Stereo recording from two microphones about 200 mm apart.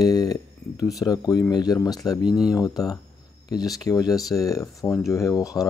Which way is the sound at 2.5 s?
20° left (ahead or behind).